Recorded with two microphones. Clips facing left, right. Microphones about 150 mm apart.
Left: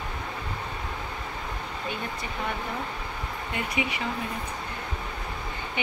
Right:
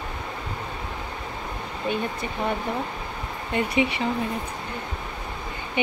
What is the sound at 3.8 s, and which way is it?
Speech, 30° right (ahead or behind).